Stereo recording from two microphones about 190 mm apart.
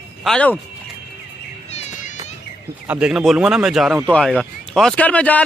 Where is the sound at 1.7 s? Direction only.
35° left (ahead or behind).